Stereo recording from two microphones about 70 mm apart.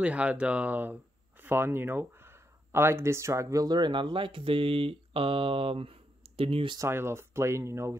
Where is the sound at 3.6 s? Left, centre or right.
Right.